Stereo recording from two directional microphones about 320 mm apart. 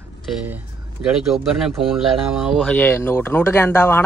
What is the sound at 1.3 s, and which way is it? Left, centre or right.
Speech, centre.